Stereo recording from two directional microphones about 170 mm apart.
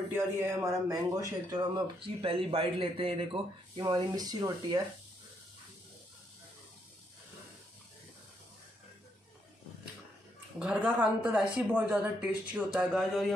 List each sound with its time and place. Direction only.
0.1 s speech: 15° right (ahead or behind)
10.6 s a woman's voice: 5° right (ahead or behind)